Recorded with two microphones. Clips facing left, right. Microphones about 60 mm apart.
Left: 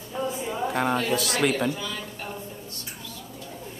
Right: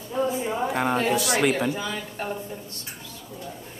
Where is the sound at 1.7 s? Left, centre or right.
Right.